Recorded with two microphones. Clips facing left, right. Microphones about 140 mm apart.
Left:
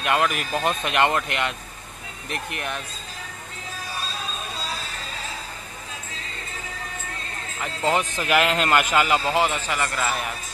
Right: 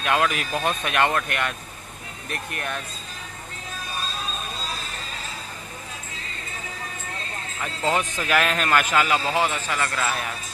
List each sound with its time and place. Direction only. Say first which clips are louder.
0.0 s speech: even; 5° left (ahead or behind)
2.5 s speech: right 1 dB; 15° left (ahead or behind)
7.9 s a man's voice: left 1 dB; 10° left (ahead or behind)